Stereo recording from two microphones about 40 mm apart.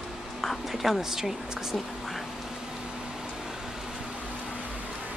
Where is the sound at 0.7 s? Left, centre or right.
Centre.